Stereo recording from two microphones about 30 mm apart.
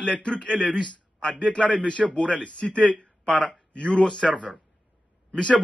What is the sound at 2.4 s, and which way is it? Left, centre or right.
Speech, left.